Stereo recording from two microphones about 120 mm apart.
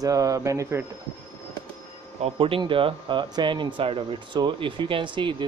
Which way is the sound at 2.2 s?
50° right (ahead or behind).